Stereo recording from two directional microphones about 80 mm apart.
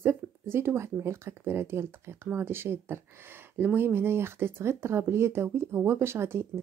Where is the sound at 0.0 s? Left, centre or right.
Right.